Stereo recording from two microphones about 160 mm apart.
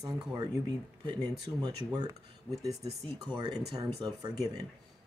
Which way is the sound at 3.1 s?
25° right (ahead or behind).